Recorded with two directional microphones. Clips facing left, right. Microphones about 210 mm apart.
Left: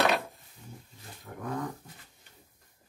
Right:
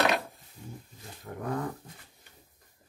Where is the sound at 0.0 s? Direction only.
Centre (ahead or behind).